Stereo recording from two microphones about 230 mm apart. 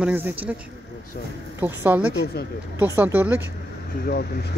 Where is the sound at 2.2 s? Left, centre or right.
Left.